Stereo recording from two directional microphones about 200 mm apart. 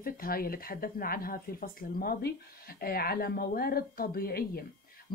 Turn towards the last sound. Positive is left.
turn(degrees=50)  # may be behind; listen again after turning